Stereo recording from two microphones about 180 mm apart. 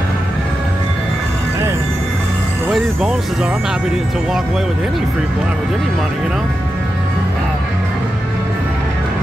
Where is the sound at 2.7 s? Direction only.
5° right (ahead or behind).